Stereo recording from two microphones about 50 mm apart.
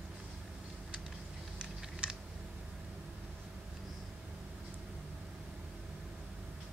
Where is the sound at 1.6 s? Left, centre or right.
Centre.